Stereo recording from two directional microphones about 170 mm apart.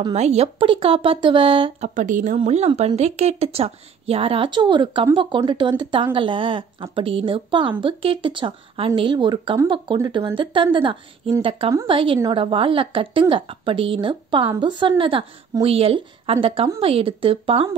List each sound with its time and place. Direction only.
0.1 s a woman's voice: 40° right (ahead or behind)
2.0 s a woman's voice: 45° right (ahead or behind); by 17.6 s 30° right (ahead or behind)